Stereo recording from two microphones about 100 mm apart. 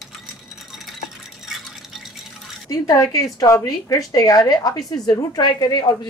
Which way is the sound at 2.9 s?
35° left (ahead or behind).